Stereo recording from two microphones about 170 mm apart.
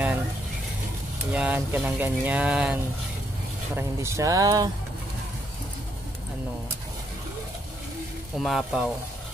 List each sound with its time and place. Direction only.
1.3 s speech: 10° right (ahead or behind)
8.4 s speech: centre (ahead or behind)